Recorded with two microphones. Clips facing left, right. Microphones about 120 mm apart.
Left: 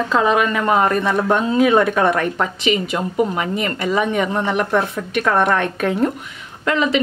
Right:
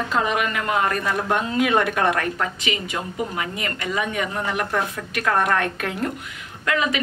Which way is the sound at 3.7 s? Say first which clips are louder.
Left 6 dB; 30° left (ahead or behind).